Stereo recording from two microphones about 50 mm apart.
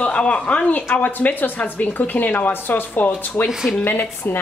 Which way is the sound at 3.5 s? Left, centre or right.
Centre.